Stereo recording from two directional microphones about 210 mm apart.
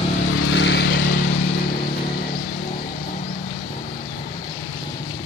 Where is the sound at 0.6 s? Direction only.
60° left (ahead or behind).